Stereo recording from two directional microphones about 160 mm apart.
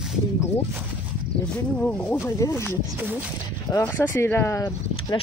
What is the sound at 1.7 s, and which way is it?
Speech, 10° left (ahead or behind).